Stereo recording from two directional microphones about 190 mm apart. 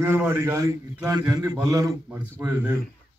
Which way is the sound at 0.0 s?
10° right (ahead or behind).